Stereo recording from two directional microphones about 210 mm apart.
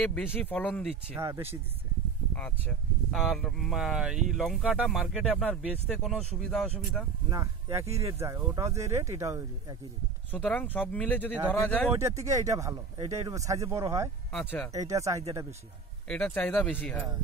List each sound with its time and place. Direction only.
0.0 s speech: 10° left (ahead or behind)
1.1 s speech: 10° right (ahead or behind)
3.1 s speech: centre (ahead or behind)
7.2 s speech: 15° right (ahead or behind)
7.9 s speech: 30° right (ahead or behind)
8.2 s speech: 15° right (ahead or behind)
10.3 s speech: 5° left (ahead or behind)
11.9 s speech: 15° right (ahead or behind)
14.3 s speech: 5° left (ahead or behind)
14.7 s speech: 15° right (ahead or behind)
16.1 s speech: 5° left (ahead or behind)